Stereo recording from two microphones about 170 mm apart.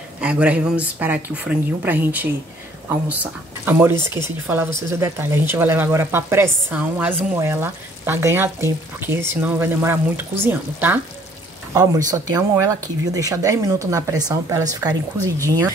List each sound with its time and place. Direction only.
0.2 s speech: 5° right (ahead or behind)